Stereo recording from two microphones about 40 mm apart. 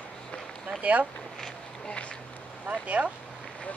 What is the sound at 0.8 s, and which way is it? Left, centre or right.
Speech, right.